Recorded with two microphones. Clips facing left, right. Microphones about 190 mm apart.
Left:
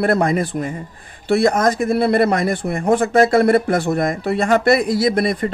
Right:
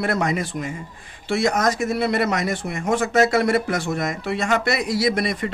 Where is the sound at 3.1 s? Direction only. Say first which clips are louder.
Left 4 dB; 55° left (ahead or behind).